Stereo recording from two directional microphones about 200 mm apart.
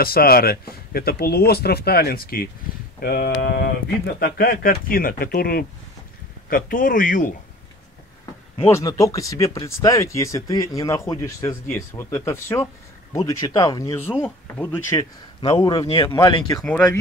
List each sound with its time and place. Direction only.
0.0 s speech: 50° left (ahead or behind)
8.6 s speech: 15° left (ahead or behind)
15.4 s speech: 25° left (ahead or behind)
16.5 s speech: 5° left (ahead or behind)